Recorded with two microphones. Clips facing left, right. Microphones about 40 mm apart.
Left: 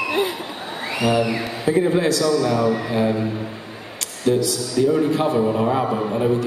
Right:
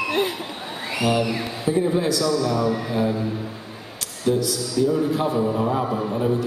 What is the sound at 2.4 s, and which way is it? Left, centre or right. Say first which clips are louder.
A man's voice: left 3 dB; left.